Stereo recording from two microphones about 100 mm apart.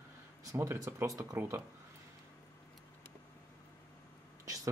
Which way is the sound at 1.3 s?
20° right (ahead or behind).